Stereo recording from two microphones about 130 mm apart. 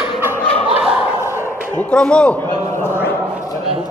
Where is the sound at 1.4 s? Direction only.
15° left (ahead or behind).